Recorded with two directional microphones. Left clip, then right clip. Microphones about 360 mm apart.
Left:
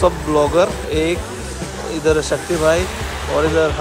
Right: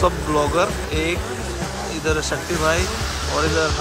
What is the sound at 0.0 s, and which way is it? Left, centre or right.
Speech, centre.